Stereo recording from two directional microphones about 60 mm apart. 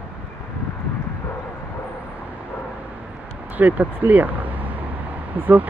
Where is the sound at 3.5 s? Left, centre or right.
Right.